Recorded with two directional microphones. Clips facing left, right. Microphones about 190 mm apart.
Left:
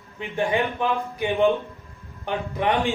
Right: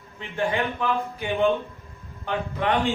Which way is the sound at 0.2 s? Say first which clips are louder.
Left 2 dB; 15° left (ahead or behind).